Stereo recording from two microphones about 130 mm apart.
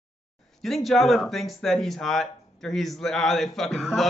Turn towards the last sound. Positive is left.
turn(degrees=0)  # may be behind; listen again after turning